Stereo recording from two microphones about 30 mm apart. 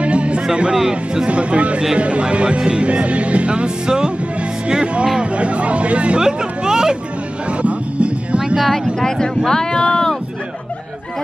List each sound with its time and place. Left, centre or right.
0.0 s music: right
0.7 s speech: right
1.3 s speech: right
3.8 s speech: right
5.2 s speech: right
6.1 s speech: right
7.6 s music: right
9.0 s speech: left